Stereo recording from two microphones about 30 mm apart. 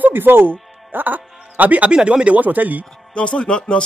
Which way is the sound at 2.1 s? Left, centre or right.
Right.